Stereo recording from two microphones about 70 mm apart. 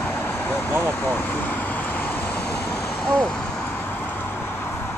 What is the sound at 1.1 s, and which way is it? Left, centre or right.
Vehicle, left.